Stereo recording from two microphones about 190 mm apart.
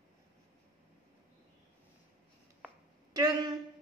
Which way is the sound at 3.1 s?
20° right (ahead or behind).